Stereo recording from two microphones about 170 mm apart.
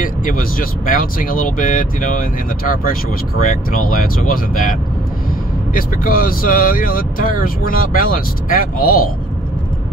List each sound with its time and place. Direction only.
0.0 s speech: 55° left (ahead or behind)
5.8 s speech: 55° left (ahead or behind)